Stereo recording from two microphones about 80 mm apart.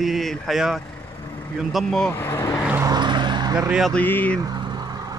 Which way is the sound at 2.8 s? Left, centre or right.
Right.